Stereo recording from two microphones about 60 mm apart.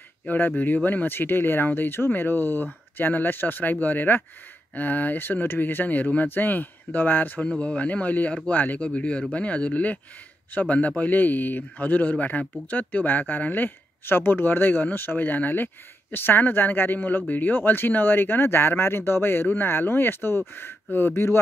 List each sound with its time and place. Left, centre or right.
0.3 s a man's voice: left
7.4 s a man's voice: centre; by 21.4 s left